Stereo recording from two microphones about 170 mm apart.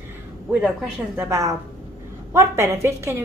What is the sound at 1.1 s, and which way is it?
A woman's voice, 15° right (ahead or behind).